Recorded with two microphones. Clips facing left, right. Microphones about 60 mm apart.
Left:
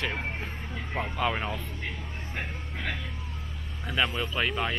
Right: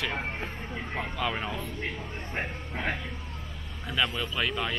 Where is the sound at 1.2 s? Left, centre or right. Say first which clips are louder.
Left 3 dB; centre.